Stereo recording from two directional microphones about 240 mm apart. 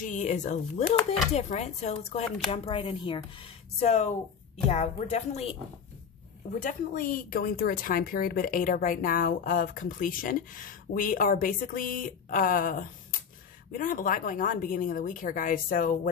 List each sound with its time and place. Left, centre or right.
0.0 s speech: left
6.6 s speech: left